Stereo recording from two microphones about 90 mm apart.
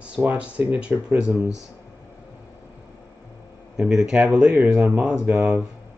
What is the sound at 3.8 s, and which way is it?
Speech, 5° right (ahead or behind).